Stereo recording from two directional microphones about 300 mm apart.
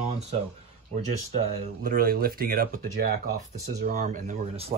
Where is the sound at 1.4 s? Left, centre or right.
Centre.